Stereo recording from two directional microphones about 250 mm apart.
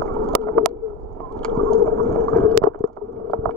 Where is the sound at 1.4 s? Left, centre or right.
Centre.